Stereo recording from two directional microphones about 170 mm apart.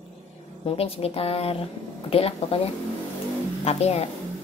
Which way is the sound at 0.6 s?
35° left (ahead or behind).